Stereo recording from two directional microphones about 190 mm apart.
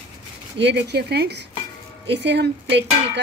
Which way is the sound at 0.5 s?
65° right (ahead or behind).